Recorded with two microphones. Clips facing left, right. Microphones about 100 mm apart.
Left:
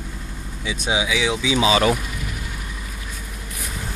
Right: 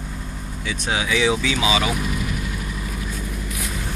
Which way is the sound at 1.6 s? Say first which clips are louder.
Left 5 dB; 40° left (ahead or behind).